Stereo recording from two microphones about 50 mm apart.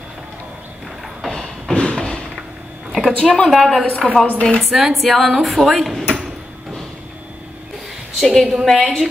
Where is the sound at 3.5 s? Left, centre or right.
Centre.